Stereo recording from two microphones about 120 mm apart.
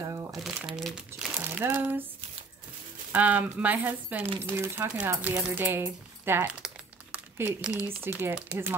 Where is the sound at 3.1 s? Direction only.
15° right (ahead or behind).